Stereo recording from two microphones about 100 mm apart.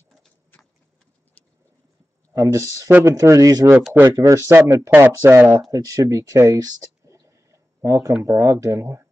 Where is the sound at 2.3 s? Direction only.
30° right (ahead or behind).